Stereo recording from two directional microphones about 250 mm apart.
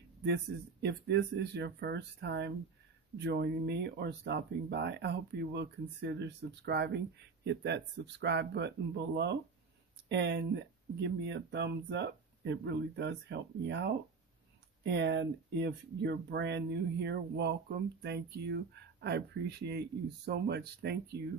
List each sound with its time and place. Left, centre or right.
0.2 s speech: right